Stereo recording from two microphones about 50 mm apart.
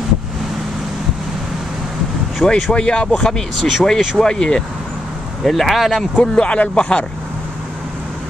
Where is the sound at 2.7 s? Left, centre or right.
Centre.